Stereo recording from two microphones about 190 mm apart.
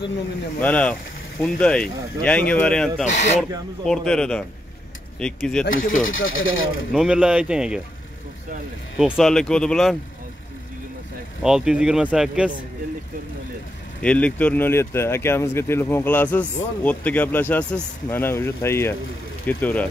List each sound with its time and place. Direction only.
0.6 s speech: 5° left (ahead or behind)
5.9 s speech: 90° left
6.9 s speech: 5° right (ahead or behind)
8.9 s speech: 5° right (ahead or behind)
11.4 s speech: 5° right (ahead or behind)
14.0 s speech: 5° left (ahead or behind)